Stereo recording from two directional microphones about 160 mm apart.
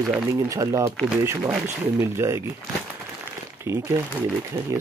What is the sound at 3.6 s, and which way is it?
Speech, 15° right (ahead or behind).